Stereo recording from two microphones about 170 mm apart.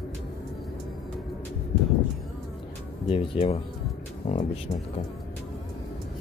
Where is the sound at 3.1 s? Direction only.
35° left (ahead or behind).